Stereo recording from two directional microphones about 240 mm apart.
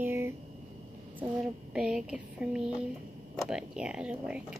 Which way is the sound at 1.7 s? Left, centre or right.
Centre.